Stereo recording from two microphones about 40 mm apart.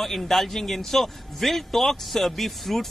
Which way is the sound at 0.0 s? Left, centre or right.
Centre.